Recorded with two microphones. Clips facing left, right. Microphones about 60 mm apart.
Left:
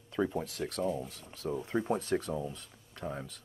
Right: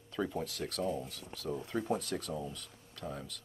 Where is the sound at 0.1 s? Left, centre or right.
Left.